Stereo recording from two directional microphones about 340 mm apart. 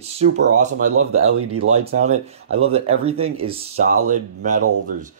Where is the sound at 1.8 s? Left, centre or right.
Centre.